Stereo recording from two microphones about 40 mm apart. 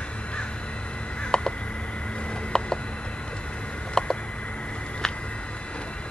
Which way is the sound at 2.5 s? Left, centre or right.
Centre.